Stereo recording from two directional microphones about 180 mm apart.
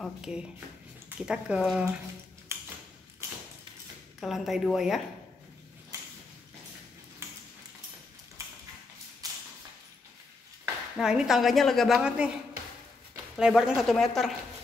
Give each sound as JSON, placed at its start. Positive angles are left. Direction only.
{"t": 0.0, "sound": "a woman's voice", "side_deg": -5}
{"t": 4.2, "sound": "a woman's voice", "side_deg": 0}
{"t": 5.9, "sound": "a sound", "side_deg": -20}
{"t": 8.4, "sound": "a sound", "side_deg": -15}
{"t": 11.0, "sound": "a woman's voice", "side_deg": -5}
{"t": 13.4, "sound": "a woman's voice", "side_deg": -5}